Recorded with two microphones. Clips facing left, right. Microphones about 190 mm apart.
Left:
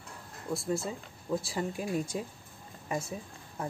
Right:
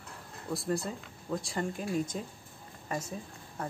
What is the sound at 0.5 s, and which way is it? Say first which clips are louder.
Speech: even; centre (ahead or behind).